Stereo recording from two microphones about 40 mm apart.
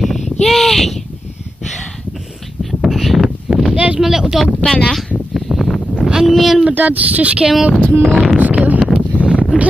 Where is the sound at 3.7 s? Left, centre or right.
Right.